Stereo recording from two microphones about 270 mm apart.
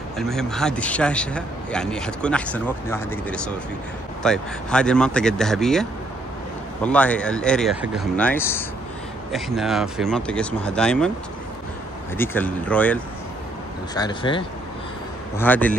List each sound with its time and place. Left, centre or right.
0.2 s a man's voice: centre
12.2 s a man's voice: centre
13.9 s speech: centre
15.3 s speech: centre